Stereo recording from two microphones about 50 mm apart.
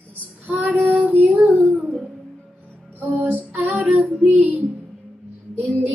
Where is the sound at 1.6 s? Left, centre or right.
Right.